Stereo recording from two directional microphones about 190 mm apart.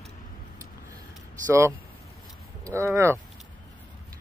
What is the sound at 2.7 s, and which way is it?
Speech, 15° right (ahead or behind).